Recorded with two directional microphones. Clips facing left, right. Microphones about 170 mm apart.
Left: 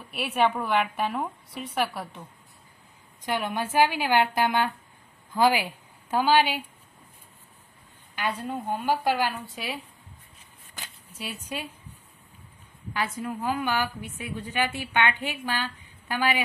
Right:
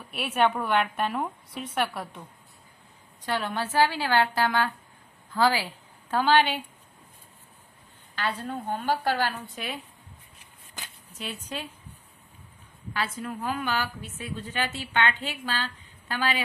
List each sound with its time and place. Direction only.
0.1 s a woman's voice: centre (ahead or behind)
3.3 s a woman's voice: 15° left (ahead or behind)
8.2 s a woman's voice: 10° left (ahead or behind)
11.1 s a woman's voice: 10° left (ahead or behind)
12.9 s a woman's voice: 15° left (ahead or behind)